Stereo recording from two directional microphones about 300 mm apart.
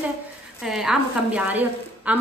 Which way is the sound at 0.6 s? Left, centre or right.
Centre.